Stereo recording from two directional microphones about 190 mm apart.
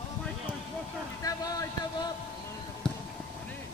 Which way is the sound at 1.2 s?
20° left (ahead or behind).